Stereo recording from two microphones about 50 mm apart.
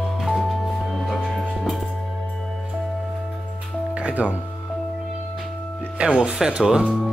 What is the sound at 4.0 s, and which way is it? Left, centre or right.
Music, right.